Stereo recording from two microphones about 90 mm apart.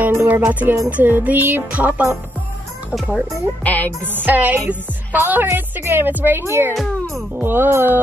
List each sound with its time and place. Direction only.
0.1 s a woman's voice: 30° right (ahead or behind)
3.6 s speech: 20° left (ahead or behind)
4.0 s a woman's voice: 20° right (ahead or behind)
6.7 s speech: centre (ahead or behind)
7.3 s a woman's voice: 25° right (ahead or behind)